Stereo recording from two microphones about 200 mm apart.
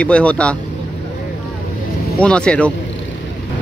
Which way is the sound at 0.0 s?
5° left (ahead or behind).